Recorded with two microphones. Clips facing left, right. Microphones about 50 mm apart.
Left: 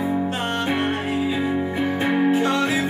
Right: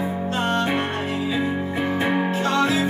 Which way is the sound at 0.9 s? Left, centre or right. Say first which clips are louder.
Left 1 dB; centre.